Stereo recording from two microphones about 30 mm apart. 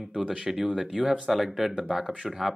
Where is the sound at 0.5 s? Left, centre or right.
Centre.